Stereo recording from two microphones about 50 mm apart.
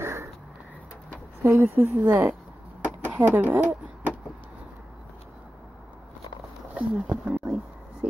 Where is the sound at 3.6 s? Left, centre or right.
Right.